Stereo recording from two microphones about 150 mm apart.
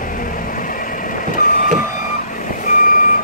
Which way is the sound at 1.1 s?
60° left (ahead or behind).